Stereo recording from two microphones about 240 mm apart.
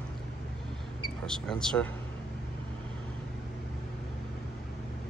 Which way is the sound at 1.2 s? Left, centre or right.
Centre.